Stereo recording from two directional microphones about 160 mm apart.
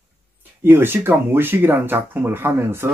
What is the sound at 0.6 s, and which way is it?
Speech, 10° right (ahead or behind).